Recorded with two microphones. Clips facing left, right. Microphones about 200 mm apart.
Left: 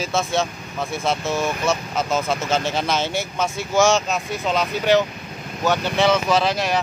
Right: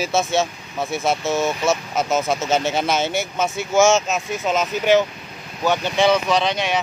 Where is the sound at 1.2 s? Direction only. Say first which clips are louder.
Right 2 dB; 25° right (ahead or behind).